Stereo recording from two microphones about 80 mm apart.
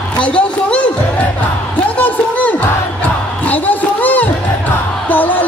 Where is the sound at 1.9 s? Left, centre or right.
Left.